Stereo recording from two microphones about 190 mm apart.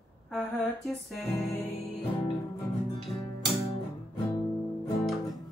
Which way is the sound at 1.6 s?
30° left (ahead or behind).